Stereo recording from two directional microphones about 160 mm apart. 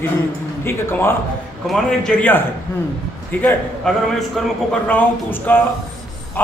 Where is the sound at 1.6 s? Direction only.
5° left (ahead or behind).